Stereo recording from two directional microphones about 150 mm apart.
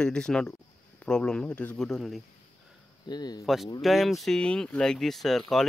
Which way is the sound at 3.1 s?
25° left (ahead or behind).